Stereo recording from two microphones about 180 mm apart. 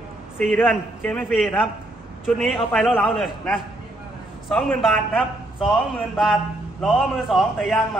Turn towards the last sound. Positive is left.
turn(degrees=0)  # may be behind; listen again after turning